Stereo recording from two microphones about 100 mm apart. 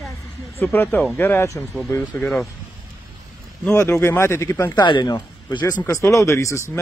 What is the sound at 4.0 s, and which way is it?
Speech, 25° left (ahead or behind).